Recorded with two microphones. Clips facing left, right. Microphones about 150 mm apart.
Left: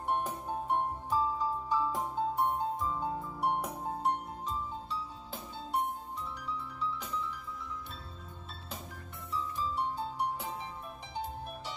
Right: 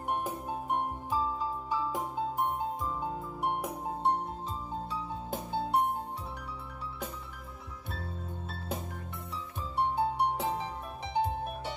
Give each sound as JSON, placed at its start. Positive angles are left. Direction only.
{"t": 0.1, "sound": "music", "side_deg": -10}
{"t": 4.0, "sound": "music", "side_deg": -30}
{"t": 4.8, "sound": "music", "side_deg": -55}
{"t": 9.3, "sound": "music", "side_deg": -65}